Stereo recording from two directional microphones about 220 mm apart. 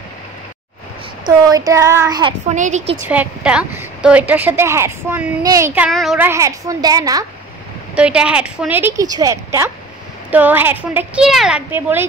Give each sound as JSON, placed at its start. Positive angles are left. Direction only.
{"t": 1.2, "sound": "a woman's voice", "side_deg": -15}
{"t": 2.5, "sound": "a woman's voice", "side_deg": -35}
{"t": 3.1, "sound": "a woman's voice", "side_deg": -5}
{"t": 5.8, "sound": "a woman's voice", "side_deg": 0}
{"t": 7.9, "sound": "a woman's voice", "side_deg": -5}